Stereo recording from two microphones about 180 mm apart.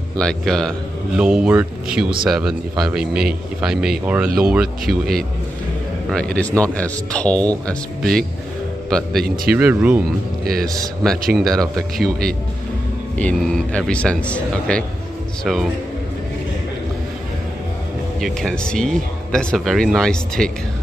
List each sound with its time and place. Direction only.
0.2 s speech: 5° left (ahead or behind)
4.8 s speech: 55° right (ahead or behind)
6.0 s speech: 5° left (ahead or behind)
10.4 s speech: 55° right (ahead or behind)
11.3 s speech: centre (ahead or behind)
18.2 s speech: 5° left (ahead or behind)